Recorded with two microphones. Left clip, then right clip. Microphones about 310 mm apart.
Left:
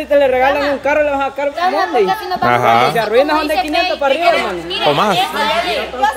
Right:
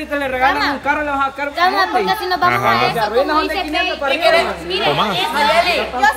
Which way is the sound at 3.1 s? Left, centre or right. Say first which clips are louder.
Left 3 dB; left.